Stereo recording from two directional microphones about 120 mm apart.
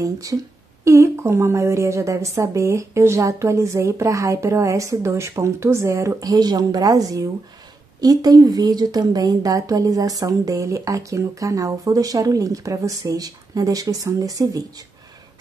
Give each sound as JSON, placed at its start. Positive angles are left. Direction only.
{"t": 0.0, "sound": "a woman's voice", "side_deg": -30}